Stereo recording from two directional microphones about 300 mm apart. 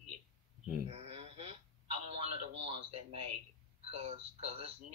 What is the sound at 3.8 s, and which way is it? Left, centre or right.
Speech, centre.